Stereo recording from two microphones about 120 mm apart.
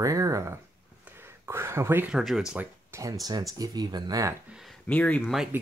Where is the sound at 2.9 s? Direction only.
30° right (ahead or behind).